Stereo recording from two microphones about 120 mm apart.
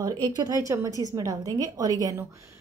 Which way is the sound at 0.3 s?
30° right (ahead or behind).